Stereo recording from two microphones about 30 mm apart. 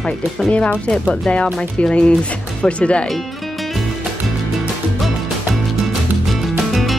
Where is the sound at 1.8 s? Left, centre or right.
Left.